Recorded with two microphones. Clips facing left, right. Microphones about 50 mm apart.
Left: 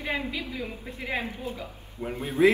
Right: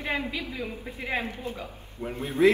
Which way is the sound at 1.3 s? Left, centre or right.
Right.